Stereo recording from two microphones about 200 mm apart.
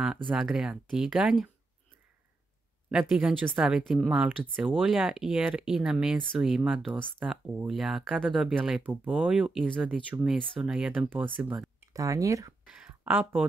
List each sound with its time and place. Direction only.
0.3 s speech: centre (ahead or behind)
2.9 s speech: centre (ahead or behind)